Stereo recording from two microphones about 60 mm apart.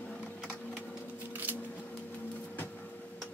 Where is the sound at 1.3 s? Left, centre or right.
Right.